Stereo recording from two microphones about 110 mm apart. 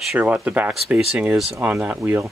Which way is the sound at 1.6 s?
15° right (ahead or behind).